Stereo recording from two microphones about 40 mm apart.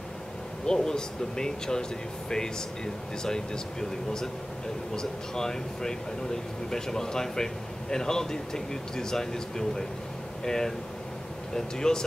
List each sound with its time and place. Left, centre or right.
0.7 s speech: centre
4.9 s speech: centre